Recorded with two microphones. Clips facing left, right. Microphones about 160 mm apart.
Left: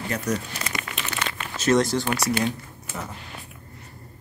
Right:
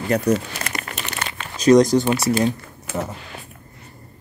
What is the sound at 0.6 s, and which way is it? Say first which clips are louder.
Crumpling: right 2 dB; 40° right (ahead or behind).